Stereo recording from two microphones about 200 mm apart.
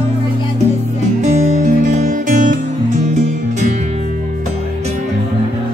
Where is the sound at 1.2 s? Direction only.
35° right (ahead or behind).